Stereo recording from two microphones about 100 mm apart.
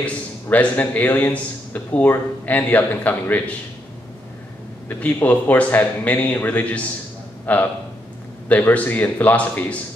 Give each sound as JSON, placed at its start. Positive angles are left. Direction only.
{"t": 0.0, "sound": "a man's voice", "side_deg": 15}
{"t": 4.8, "sound": "a man's voice", "side_deg": 15}